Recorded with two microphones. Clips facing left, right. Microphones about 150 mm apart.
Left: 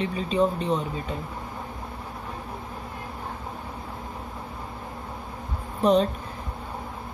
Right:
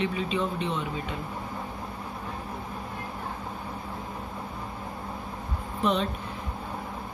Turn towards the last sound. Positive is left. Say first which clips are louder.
# left 6 dB
turn(degrees=40)  # may be behind; listen again after turning